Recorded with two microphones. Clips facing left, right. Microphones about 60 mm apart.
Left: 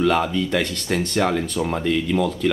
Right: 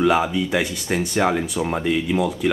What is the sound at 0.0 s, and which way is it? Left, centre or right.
Speech, centre.